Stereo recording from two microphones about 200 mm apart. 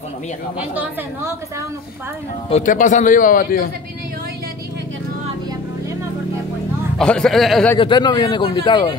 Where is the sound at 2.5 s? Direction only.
40° left (ahead or behind).